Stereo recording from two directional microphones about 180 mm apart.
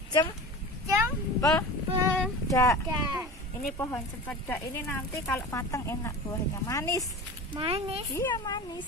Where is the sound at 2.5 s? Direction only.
15° left (ahead or behind).